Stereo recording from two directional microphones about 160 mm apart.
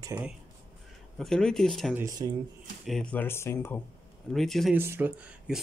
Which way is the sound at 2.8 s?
5° left (ahead or behind).